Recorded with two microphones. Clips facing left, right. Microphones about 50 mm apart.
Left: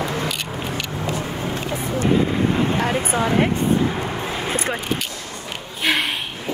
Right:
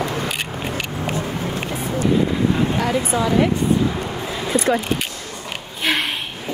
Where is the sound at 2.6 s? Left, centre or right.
Left.